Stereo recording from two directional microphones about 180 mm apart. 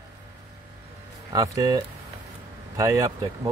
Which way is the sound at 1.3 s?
20° right (ahead or behind).